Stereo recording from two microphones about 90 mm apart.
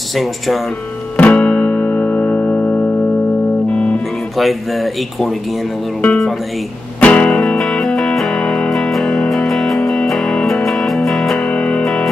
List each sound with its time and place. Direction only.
0.1 s speech: centre (ahead or behind)
1.1 s music: 15° left (ahead or behind)
4.4 s speech: centre (ahead or behind)
7.0 s music: 15° left (ahead or behind)